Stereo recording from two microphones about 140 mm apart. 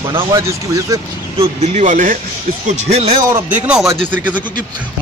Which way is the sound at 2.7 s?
45° right (ahead or behind).